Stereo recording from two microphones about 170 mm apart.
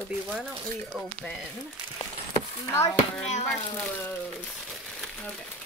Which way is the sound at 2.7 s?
15° left (ahead or behind).